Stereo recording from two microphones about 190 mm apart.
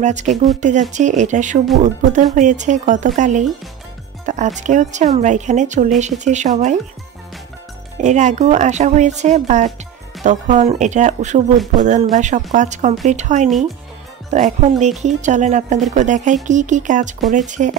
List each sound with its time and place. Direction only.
0.0 s speech: 40° right (ahead or behind)
4.6 s speech: 40° right (ahead or behind)
8.0 s speech: 40° right (ahead or behind)